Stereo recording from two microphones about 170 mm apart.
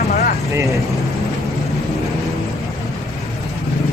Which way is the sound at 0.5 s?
20° right (ahead or behind).